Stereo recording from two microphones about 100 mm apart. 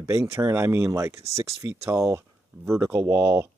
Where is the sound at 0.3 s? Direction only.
25° right (ahead or behind).